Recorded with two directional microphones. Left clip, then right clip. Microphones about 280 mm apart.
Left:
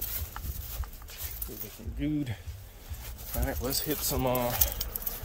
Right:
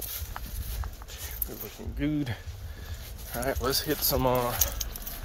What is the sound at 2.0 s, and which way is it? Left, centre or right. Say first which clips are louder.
Speech: right 2 dB; centre.